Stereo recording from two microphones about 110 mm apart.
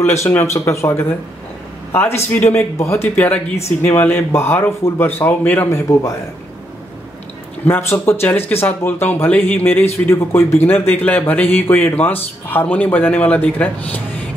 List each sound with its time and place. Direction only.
0.0 s speech: 25° left (ahead or behind)
2.4 s speech: 25° left (ahead or behind)
7.6 s speech: 20° left (ahead or behind)